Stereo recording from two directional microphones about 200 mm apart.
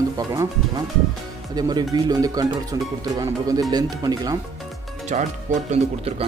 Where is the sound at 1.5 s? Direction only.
20° right (ahead or behind).